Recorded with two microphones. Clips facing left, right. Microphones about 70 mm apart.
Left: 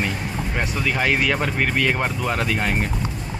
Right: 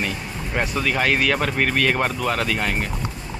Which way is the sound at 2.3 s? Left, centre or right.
Centre.